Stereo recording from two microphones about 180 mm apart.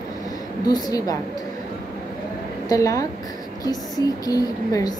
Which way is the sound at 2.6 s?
20° left (ahead or behind).